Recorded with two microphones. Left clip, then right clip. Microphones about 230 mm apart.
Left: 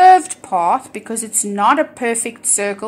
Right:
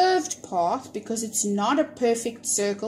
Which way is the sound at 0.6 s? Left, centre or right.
Centre.